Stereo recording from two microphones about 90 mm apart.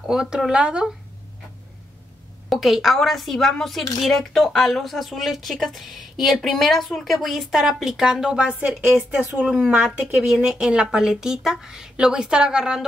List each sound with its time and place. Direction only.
0.0 s speech: 5° right (ahead or behind)
2.5 s speech: centre (ahead or behind)